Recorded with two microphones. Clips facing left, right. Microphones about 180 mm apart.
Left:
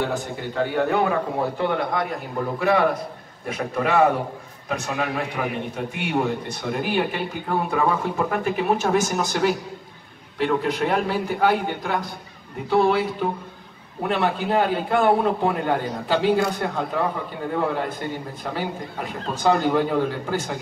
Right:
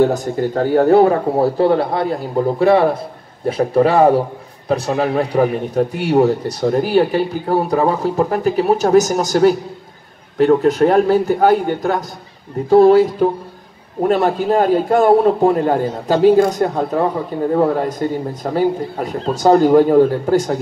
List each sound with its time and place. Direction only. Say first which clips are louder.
0.0 s a man's voice: right 11 dB; 40° right (ahead or behind)